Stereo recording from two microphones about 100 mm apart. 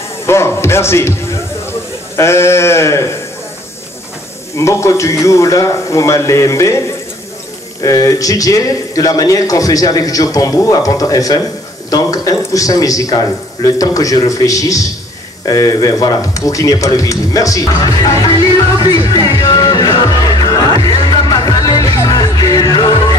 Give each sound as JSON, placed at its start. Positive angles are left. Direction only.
{"t": 0.3, "sound": "speech", "side_deg": 25}
{"t": 2.1, "sound": "sheep", "side_deg": 25}
{"t": 4.6, "sound": "speech", "side_deg": 30}
{"t": 7.8, "sound": "speech", "side_deg": 35}
{"t": 18.8, "sound": "music", "side_deg": 40}